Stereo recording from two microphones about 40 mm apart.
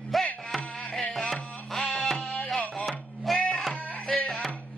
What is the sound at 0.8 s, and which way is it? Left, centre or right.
Carnatic music, centre.